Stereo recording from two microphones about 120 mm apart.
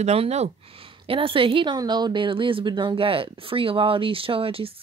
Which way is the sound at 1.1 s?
45° right (ahead or behind).